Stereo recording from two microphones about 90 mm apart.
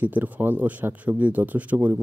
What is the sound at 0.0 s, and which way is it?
Speech, 20° right (ahead or behind).